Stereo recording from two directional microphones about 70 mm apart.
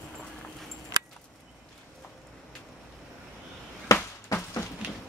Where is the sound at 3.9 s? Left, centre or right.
Left.